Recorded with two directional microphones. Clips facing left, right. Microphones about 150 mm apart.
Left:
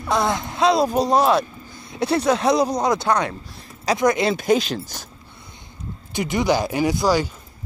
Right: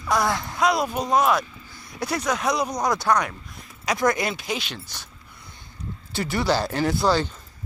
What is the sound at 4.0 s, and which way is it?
Speech, 20° left (ahead or behind).